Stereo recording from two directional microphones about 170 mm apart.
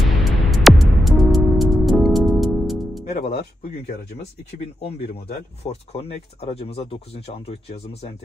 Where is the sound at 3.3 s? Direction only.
35° left (ahead or behind).